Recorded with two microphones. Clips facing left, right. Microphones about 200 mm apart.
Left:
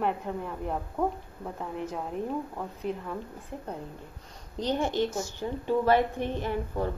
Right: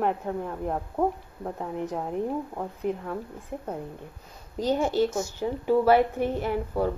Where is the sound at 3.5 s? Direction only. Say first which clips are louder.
Right 4 dB; 15° right (ahead or behind).